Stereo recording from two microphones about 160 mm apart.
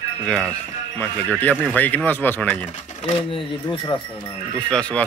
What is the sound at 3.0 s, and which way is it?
Speech, 35° left (ahead or behind).